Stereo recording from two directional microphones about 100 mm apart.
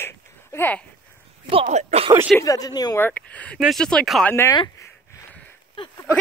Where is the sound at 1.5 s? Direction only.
75° right (ahead or behind).